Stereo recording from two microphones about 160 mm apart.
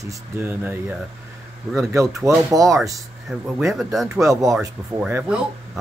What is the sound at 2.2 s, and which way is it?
Speech, 20° right (ahead or behind).